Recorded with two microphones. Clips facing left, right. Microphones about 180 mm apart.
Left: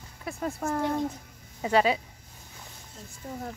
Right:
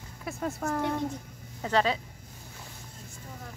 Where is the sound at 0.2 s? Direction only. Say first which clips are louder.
Left 1 dB; centre (ahead or behind).